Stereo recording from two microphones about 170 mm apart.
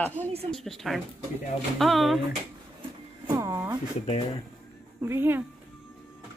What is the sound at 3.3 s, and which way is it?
Speech, 15° right (ahead or behind).